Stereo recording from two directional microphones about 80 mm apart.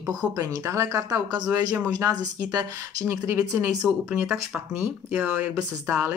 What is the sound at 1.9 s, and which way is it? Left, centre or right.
Speech, right.